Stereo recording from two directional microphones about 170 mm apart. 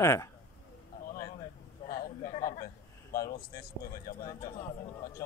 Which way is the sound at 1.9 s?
55° left (ahead or behind).